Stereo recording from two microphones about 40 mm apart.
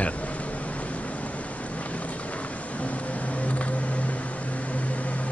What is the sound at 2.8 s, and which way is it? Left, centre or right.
Vehicle, left.